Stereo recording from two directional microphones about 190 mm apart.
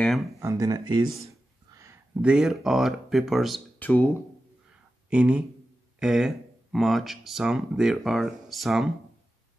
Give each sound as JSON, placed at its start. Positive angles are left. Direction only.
{"t": 0.0, "sound": "speech", "side_deg": 0}
{"t": 0.4, "sound": "speech", "side_deg": -15}
{"t": 1.3, "sound": "a sound", "side_deg": -15}
{"t": 2.2, "sound": "speech", "side_deg": 0}
{"t": 5.1, "sound": "speech", "side_deg": -5}